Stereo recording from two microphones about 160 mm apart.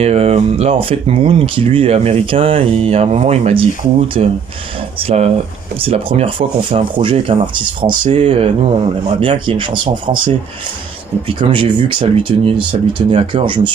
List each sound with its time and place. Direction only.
0.0 s speech: 40° right (ahead or behind)
11.3 s speech: 30° right (ahead or behind)